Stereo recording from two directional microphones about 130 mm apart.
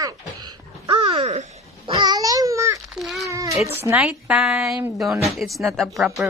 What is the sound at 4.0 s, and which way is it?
Speech, 5° right (ahead or behind).